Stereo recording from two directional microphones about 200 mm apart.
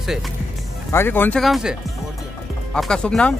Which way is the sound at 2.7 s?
5° left (ahead or behind).